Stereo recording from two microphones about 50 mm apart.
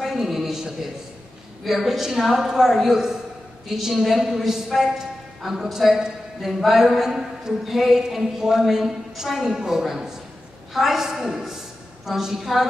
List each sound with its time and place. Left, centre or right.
0.0 s a man's voice: centre